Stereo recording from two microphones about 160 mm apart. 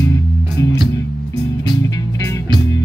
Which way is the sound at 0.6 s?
20° left (ahead or behind).